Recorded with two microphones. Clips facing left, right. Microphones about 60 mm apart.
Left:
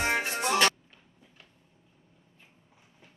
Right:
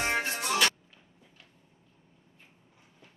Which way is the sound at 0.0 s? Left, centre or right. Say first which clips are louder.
Left 2 dB; centre.